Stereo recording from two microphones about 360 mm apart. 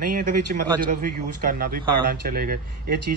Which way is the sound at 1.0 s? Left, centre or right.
Right.